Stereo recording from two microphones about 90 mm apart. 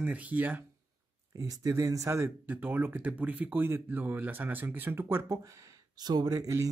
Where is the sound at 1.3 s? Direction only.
40° right (ahead or behind).